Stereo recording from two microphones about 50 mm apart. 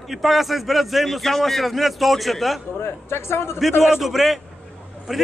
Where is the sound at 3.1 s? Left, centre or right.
Left.